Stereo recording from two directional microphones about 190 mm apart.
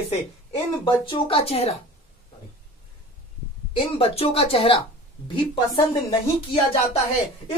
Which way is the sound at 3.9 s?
30° left (ahead or behind).